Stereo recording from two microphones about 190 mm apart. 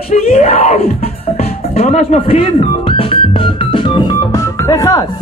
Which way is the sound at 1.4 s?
35° left (ahead or behind).